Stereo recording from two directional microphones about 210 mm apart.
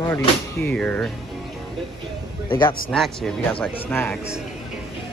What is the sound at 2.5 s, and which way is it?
Speech, 20° left (ahead or behind).